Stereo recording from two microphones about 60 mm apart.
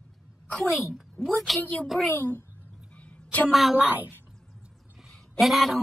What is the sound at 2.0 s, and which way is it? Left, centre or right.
Speech, left.